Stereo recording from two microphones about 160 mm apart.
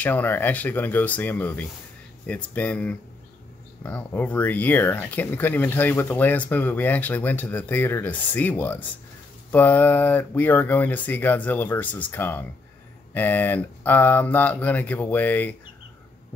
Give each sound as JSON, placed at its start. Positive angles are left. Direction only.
{"t": 0.0, "sound": "speech", "side_deg": 10}